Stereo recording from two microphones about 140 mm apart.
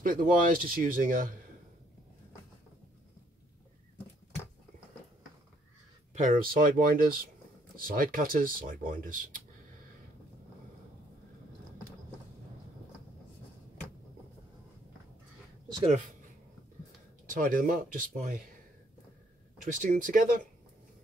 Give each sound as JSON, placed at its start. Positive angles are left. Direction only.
{"t": 0.0, "sound": "speech", "side_deg": -85}
{"t": 6.1, "sound": "speech", "side_deg": -75}
{"t": 17.3, "sound": "speech", "side_deg": -70}
{"t": 19.6, "sound": "speech", "side_deg": -65}